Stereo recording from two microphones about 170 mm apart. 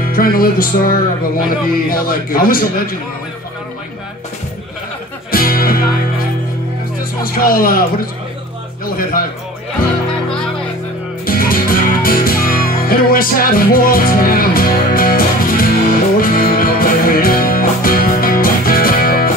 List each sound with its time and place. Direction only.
0.0 s music: 60° left (ahead or behind)
5.3 s music: 60° left (ahead or behind)
7.3 s music: 60° left (ahead or behind)
8.8 s speech: 60° left (ahead or behind)
11.2 s music: 55° left (ahead or behind)